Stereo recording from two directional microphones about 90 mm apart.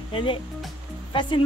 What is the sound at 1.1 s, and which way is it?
Speech, 60° left (ahead or behind).